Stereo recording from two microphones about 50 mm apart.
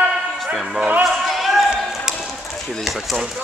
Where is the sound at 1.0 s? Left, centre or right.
Centre.